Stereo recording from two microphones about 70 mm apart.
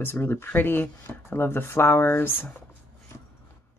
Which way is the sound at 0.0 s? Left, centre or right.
Left.